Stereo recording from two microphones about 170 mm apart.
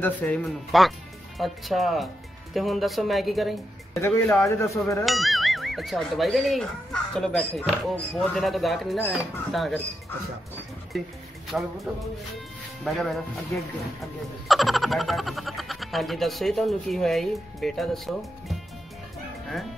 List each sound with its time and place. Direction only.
0.0 s speech: 10° left (ahead or behind)
0.7 s speech: centre (ahead or behind)
3.9 s speech: 15° left (ahead or behind)
5.0 s speech: centre (ahead or behind)
10.9 s speech: centre (ahead or behind)
12.8 s speech: centre (ahead or behind)
14.5 s speech: centre (ahead or behind)